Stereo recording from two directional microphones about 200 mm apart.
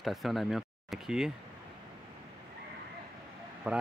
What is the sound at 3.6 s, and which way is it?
Speech, 5° right (ahead or behind).